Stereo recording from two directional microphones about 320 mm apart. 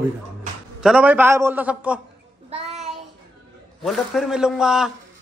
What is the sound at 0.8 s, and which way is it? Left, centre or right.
A man's voice, centre.